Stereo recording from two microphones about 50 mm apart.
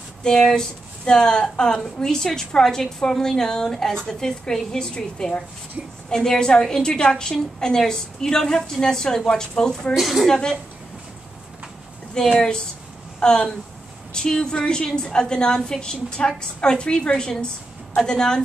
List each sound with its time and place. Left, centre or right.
0.2 s a woman's voice: centre
9.9 s a woman's voice: centre
10.2 s a woman's voice: centre
12.4 s a woman's voice: centre